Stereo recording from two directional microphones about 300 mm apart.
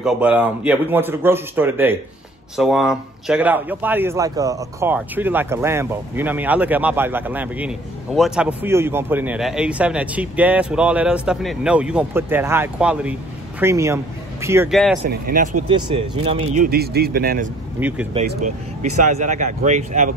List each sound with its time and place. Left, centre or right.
0.0 s speech: centre
15.0 s speech: right
15.7 s speech: centre
16.6 s speech: right
17.7 s speech: centre
18.2 s speech: right